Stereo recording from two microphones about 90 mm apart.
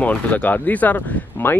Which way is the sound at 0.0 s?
15° left (ahead or behind).